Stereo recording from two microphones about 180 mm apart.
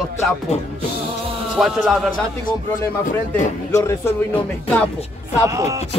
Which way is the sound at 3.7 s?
15° left (ahead or behind).